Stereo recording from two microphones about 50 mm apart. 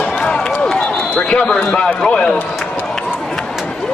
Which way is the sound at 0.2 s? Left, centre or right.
Centre.